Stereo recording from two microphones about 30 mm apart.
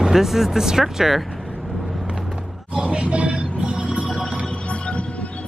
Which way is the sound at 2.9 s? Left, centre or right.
Right.